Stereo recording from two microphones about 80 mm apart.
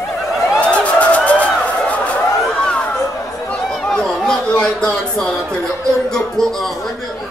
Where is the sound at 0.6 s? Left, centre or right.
Centre.